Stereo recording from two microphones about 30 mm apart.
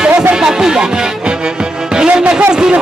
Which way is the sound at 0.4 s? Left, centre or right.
Right.